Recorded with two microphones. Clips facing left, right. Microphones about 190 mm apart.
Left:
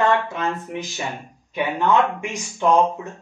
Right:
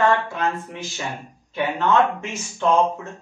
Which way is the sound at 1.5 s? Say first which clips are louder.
Left 1 dB; 15° left (ahead or behind).